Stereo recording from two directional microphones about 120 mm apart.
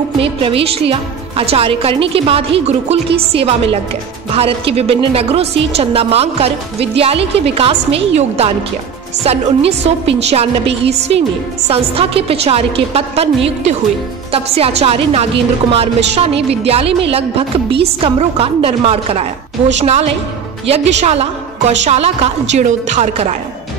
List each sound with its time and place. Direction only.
0.2 s a woman's voice: 50° right (ahead or behind); by 23.3 s 70° right (ahead or behind)